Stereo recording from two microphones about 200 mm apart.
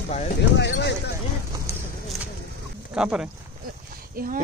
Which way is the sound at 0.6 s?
60° left (ahead or behind).